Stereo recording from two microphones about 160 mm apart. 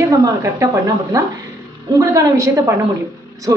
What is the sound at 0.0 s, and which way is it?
A woman's voice, 20° right (ahead or behind).